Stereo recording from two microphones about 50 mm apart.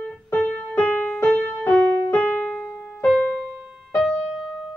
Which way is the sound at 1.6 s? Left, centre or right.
Left.